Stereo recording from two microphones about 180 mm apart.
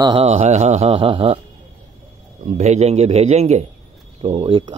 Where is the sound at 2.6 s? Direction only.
35° right (ahead or behind).